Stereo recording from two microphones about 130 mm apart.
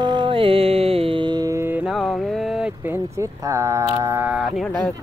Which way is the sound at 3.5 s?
25° right (ahead or behind).